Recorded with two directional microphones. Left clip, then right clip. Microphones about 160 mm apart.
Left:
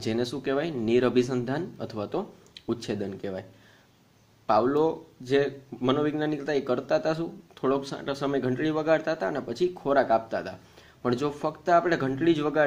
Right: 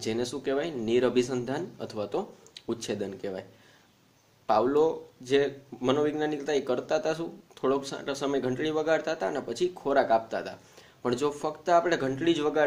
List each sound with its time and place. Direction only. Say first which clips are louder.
0.0 s speech: left 2 dB; 35° left (ahead or behind)
4.5 s speech: left 1 dB; 25° left (ahead or behind)